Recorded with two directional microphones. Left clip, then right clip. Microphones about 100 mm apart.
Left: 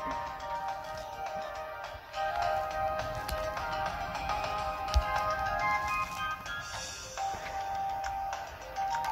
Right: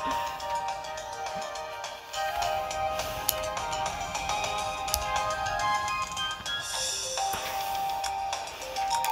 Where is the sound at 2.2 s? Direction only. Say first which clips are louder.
Right 1 dB; 40° right (ahead or behind).